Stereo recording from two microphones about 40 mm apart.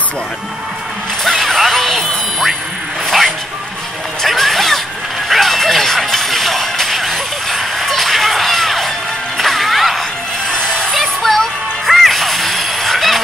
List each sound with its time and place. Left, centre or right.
1.2 s music: centre
4.2 s speech: centre
5.3 s music: centre
10.5 s a sound: left
10.9 s music: centre